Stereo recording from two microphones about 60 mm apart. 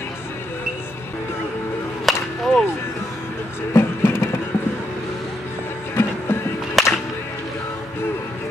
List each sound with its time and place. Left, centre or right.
2.0 s whip: centre
3.7 s music: left
5.9 s music: left
6.8 s music: centre